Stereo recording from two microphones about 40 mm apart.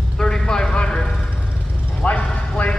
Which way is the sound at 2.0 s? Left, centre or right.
Left.